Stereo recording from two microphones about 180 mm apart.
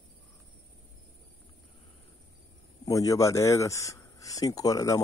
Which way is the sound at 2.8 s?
20° left (ahead or behind).